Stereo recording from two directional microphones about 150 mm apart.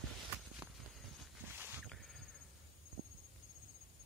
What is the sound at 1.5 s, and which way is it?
Boat, 15° right (ahead or behind).